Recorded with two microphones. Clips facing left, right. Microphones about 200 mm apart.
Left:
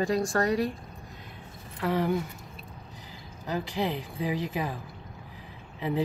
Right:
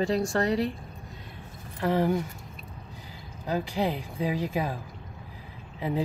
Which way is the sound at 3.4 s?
15° right (ahead or behind).